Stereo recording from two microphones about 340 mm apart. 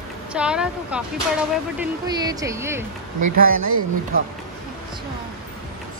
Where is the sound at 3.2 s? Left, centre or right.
Right.